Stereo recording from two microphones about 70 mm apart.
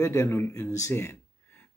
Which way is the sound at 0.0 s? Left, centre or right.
Left.